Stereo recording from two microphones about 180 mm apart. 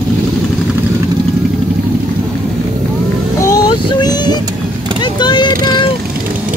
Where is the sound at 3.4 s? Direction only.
20° left (ahead or behind).